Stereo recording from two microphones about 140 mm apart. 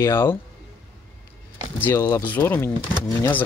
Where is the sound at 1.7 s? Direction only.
15° left (ahead or behind).